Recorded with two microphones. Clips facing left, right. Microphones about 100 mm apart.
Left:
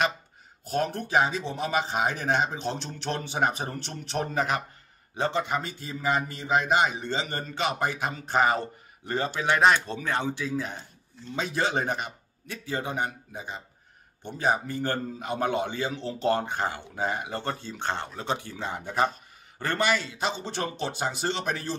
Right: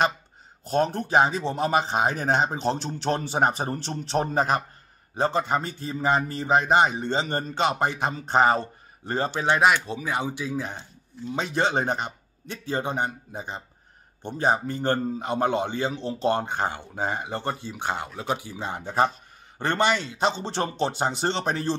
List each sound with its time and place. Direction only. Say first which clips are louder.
0.7 s a man's voice: right 4 dB; 30° right (ahead or behind)
9.8 s a man's voice: right 1 dB; 10° right (ahead or behind); by 21.7 s 30° right (ahead or behind)